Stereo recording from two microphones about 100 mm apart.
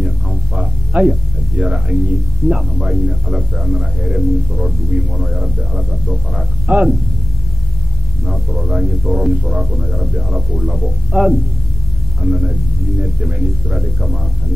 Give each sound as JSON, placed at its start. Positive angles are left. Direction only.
{"t": 0.0, "sound": "music", "side_deg": -10}
{"t": 1.6, "sound": "speech", "side_deg": -10}
{"t": 8.3, "sound": "speech", "side_deg": -5}
{"t": 12.2, "sound": "speech", "side_deg": -15}